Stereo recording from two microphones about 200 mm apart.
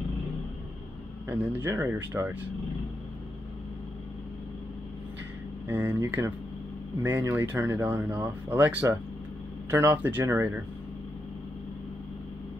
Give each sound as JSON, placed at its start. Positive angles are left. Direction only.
{"t": 1.3, "sound": "speech", "side_deg": -10}
{"t": 5.7, "sound": "speech", "side_deg": -10}